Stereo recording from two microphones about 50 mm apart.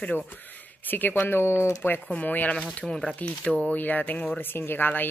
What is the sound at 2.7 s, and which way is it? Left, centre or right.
A woman's voice, left.